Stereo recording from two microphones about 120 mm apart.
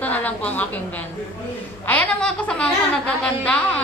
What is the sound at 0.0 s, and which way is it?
A woman's voice, 15° left (ahead or behind).